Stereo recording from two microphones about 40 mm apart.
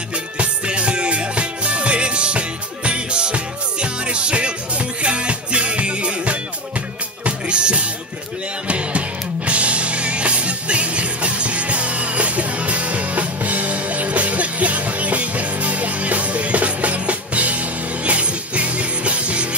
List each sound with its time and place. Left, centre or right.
0.4 s music: right